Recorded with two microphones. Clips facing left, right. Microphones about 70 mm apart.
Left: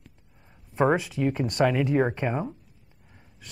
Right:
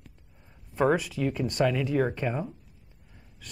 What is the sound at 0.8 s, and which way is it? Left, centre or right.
Speech, left.